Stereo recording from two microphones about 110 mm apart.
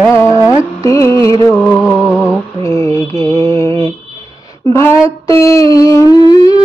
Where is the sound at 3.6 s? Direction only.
50° right (ahead or behind).